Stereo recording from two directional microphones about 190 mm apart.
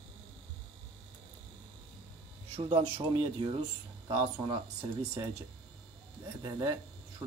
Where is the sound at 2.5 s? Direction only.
25° right (ahead or behind).